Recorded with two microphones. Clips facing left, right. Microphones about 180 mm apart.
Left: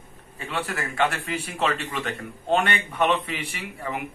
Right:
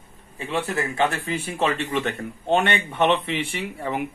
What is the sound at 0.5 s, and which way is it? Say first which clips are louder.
Speech: right 4 dB; 20° right (ahead or behind).